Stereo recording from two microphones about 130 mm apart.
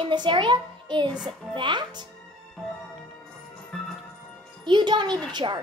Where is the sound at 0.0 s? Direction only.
35° right (ahead or behind).